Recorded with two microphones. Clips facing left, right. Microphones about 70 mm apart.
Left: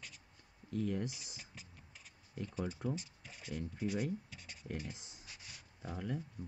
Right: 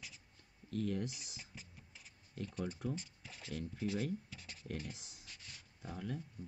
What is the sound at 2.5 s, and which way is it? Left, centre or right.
Speech, centre.